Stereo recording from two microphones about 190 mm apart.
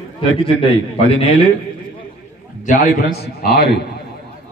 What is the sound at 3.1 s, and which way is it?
Speech, 55° left (ahead or behind).